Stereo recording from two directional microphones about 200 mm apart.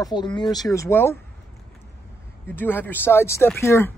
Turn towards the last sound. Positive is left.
turn(degrees=15)  # may be behind; listen again after turning